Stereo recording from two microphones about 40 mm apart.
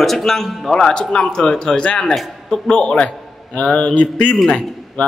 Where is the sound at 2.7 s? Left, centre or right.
Left.